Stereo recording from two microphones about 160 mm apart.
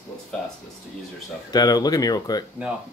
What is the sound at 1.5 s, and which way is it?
Speech, 25° left (ahead or behind).